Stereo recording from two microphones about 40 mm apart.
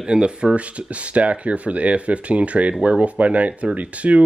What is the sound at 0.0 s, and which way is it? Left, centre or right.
Speech, right.